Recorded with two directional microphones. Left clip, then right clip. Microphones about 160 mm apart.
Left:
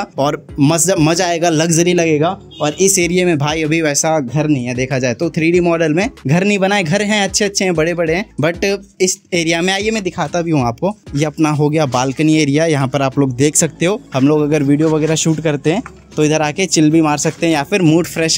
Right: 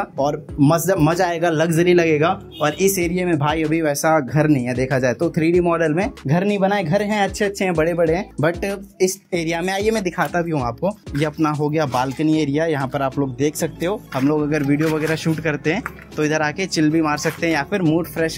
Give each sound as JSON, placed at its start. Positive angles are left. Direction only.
{"t": 0.2, "sound": "speech", "side_deg": 45}
{"t": 4.5, "sound": "speech", "side_deg": 25}
{"t": 5.8, "sound": "speech", "side_deg": 55}
{"t": 7.8, "sound": "speech", "side_deg": 40}
{"t": 9.8, "sound": "speech", "side_deg": 25}
{"t": 10.0, "sound": "speech", "side_deg": 50}
{"t": 10.5, "sound": "speech", "side_deg": 70}